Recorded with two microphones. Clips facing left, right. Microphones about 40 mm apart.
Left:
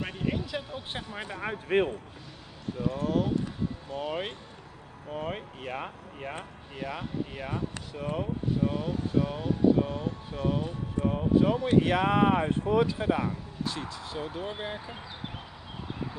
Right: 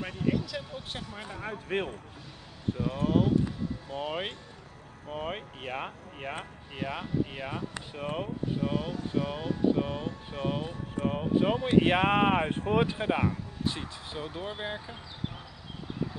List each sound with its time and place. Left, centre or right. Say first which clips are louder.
0.0 s a sound: right 2 dB; centre
1.1 s a man's voice: left 5 dB; left
1.7 s a man's voice: left 6 dB; centre
2.9 s speech: right 1 dB; right
3.9 s speech: even; centre
14.2 s speech: even; centre